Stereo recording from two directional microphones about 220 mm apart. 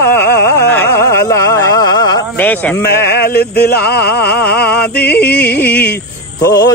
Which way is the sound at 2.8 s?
45° left (ahead or behind).